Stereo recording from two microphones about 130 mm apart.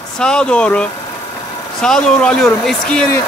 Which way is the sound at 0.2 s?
5° left (ahead or behind).